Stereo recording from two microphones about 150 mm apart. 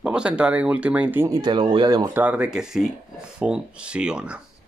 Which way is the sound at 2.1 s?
10° right (ahead or behind).